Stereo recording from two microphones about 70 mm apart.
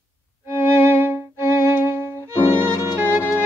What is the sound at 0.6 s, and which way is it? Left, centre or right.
Violin, right.